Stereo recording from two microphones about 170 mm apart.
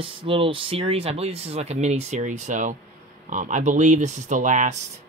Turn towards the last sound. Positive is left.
turn(degrees=-45)  # may be behind; listen again after turning